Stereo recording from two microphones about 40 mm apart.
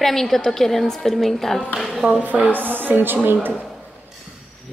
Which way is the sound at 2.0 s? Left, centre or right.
Centre.